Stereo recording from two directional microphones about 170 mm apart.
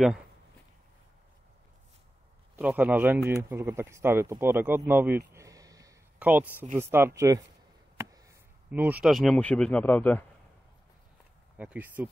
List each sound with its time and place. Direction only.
2.5 s speech: 10° right (ahead or behind)
5.3 s a sound: 20° right (ahead or behind)
6.1 s speech: 10° right (ahead or behind)
8.0 s a sound: 20° right (ahead or behind)
8.6 s speech: 10° right (ahead or behind); by 10.2 s 10° left (ahead or behind)
11.5 s speech: 10° right (ahead or behind)